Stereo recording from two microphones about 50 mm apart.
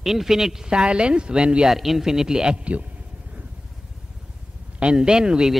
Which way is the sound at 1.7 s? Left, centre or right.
Centre.